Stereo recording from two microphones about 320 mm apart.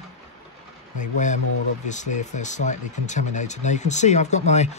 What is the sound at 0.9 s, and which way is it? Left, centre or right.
Speech, left.